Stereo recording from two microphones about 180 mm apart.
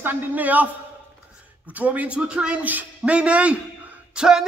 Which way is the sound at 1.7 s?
10° right (ahead or behind).